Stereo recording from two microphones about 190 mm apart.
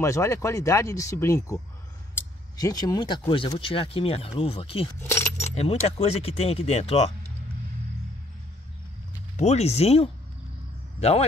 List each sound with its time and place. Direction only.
0.0 s speech: 15° left (ahead or behind)
2.6 s speech: 20° left (ahead or behind)
5.0 s speech: 15° left (ahead or behind)
5.4 s speech: 35° left (ahead or behind)
9.4 s speech: 35° left (ahead or behind)